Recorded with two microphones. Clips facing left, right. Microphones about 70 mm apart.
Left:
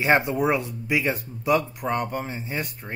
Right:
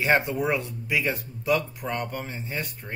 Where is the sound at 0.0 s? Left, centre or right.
Centre.